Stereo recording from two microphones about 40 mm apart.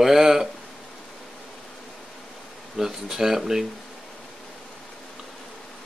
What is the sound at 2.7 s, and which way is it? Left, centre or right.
Speech, centre.